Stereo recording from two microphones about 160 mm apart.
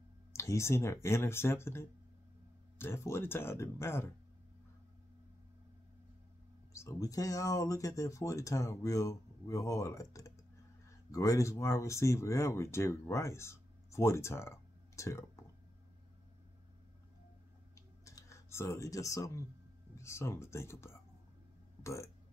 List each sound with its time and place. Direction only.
0.3 s speech: 20° left (ahead or behind)
6.7 s speech: 20° left (ahead or behind)
17.7 s a sound: 20° left (ahead or behind)
20.0 s speech: 15° left (ahead or behind)